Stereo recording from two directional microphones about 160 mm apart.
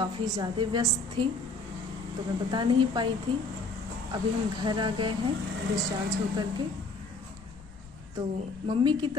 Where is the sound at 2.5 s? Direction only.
30° right (ahead or behind).